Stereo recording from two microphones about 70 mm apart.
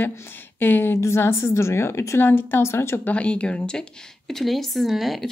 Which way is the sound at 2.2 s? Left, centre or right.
Left.